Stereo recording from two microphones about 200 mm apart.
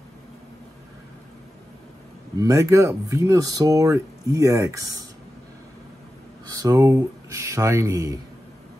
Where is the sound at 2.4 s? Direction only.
15° right (ahead or behind).